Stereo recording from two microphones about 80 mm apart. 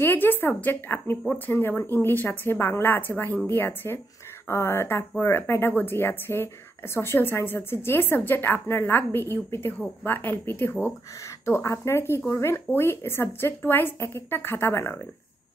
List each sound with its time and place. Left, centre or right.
0.0 s speech: left
11.4 s speech: left